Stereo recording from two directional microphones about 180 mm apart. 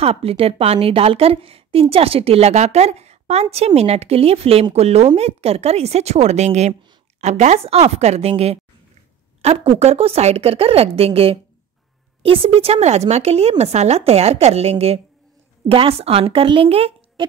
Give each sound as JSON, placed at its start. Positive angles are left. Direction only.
{"t": 0.0, "sound": "a woman's voice", "side_deg": -35}